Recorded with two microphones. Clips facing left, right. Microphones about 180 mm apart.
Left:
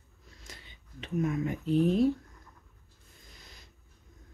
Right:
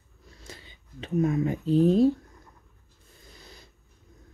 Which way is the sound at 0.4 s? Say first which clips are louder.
Right 5 dB; 35° right (ahead or behind).